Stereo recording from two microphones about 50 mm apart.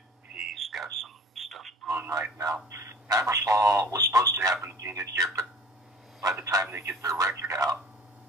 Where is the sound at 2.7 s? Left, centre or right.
Right.